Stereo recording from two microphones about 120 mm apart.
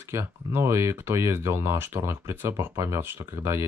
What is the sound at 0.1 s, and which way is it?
Speech, 20° right (ahead or behind).